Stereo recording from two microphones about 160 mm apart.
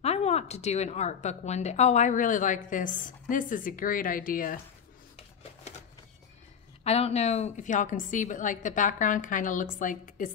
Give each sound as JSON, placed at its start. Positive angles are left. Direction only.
{"t": 0.0, "sound": "a woman's voice", "side_deg": 40}
{"t": 5.1, "sound": "a sound", "side_deg": 40}
{"t": 6.8, "sound": "a woman's voice", "side_deg": 40}